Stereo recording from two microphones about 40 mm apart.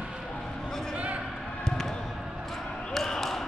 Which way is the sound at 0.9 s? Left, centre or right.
Right.